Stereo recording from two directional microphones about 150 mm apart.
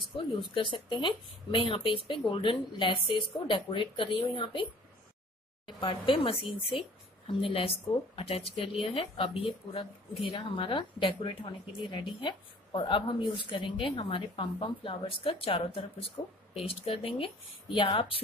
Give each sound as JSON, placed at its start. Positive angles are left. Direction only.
{"t": 0.2, "sound": "speech", "side_deg": 35}
{"t": 5.7, "sound": "speech", "side_deg": 35}